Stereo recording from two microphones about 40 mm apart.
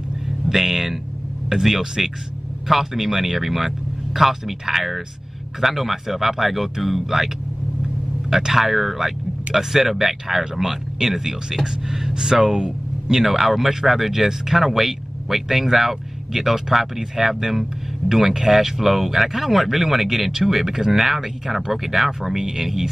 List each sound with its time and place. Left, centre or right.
0.5 s speech: centre
8.3 s speech: centre
13.2 s speech: centre